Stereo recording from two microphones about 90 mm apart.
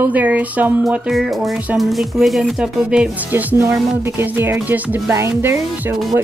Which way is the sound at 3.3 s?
25° right (ahead or behind).